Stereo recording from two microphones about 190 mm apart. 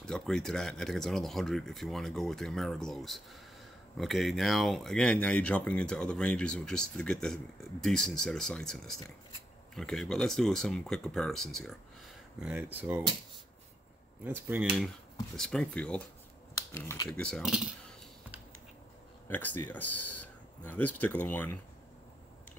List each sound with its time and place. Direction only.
0.0 s speech: 5° left (ahead or behind)
12.4 s speech: 10° right (ahead or behind)
14.2 s speech: 10° right (ahead or behind)
15.3 s speech: 5° left (ahead or behind)
16.7 s speech: 15° left (ahead or behind)
17.2 s speech: centre (ahead or behind)
19.2 s speech: 10° left (ahead or behind)